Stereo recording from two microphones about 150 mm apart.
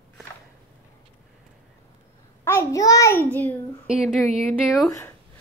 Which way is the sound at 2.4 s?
15° left (ahead or behind).